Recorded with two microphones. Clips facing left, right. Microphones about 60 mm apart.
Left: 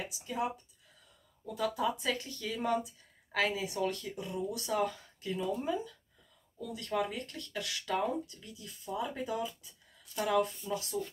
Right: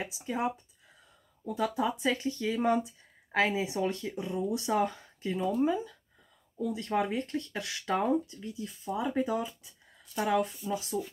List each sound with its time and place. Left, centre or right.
0.0 s speech: right
10.5 s speech: centre
10.8 s speech: centre